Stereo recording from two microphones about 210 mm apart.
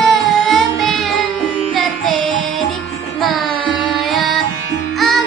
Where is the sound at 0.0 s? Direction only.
Centre (ahead or behind).